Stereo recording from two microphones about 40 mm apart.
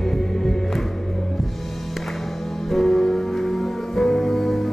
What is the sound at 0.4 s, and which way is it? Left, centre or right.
Music, centre.